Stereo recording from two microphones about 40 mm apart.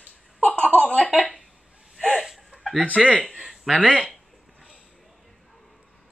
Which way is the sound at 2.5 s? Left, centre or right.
Right.